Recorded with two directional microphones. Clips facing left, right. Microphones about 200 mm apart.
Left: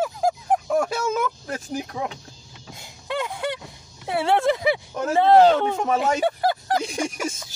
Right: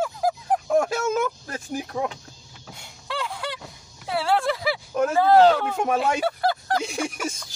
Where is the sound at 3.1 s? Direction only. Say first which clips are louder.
Left 4 dB; 20° left (ahead or behind).